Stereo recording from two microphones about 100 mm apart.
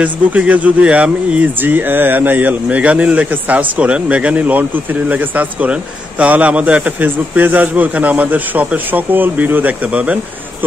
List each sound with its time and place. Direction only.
0.0 s speech: 15° right (ahead or behind)